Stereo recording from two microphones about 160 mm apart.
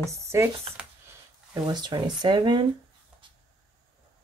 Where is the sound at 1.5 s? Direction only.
25° right (ahead or behind).